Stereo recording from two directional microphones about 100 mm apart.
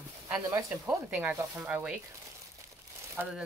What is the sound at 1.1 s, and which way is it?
Speech, 20° right (ahead or behind).